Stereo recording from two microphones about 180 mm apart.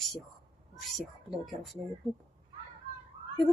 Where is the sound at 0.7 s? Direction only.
Centre (ahead or behind).